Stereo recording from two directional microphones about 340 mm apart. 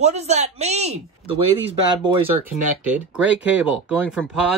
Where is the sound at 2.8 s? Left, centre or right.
Centre.